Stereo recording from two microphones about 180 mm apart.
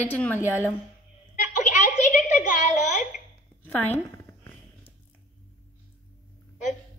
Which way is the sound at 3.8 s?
10° left (ahead or behind).